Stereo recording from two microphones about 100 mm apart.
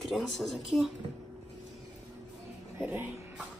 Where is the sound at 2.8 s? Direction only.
15° right (ahead or behind).